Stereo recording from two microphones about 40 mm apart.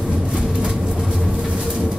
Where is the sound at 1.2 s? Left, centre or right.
Centre.